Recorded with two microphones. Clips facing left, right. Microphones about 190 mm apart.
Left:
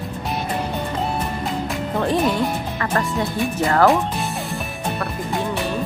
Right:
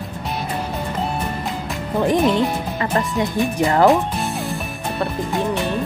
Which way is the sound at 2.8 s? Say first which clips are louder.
Right 2 dB; 15° right (ahead or behind).